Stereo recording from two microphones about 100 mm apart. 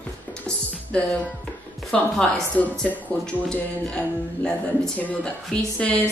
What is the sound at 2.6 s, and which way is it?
Speech, 15° left (ahead or behind).